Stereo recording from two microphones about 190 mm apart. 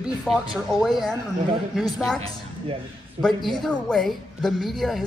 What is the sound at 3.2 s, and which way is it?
A woman's voice, centre (ahead or behind).